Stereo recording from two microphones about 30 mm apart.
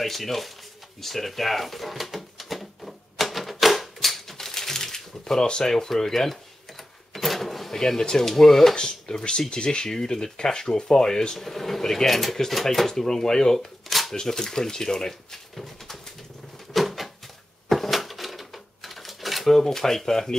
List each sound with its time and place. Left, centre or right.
0.0 s speech: centre
1.0 s drawer open or close: centre
5.7 s speech: centre
7.2 s a sound: centre
8.2 s speech: centre
8.7 s speech: left
9.8 s speech: centre
11.3 s speech: centre
13.8 s a sound: centre
14.2 s speech: centre
16.7 s a sound: centre
17.6 s drawer open or close: centre